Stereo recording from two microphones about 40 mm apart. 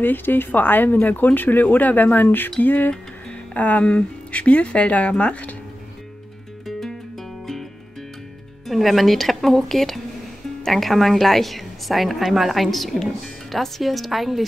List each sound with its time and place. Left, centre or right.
0.0 s speech: left
3.5 s speech: left
8.6 s a woman's voice: centre